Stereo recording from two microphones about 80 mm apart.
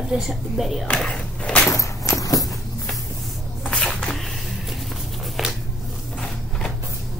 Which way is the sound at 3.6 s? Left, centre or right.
Centre.